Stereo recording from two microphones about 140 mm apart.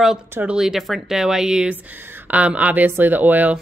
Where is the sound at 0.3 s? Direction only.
10° right (ahead or behind).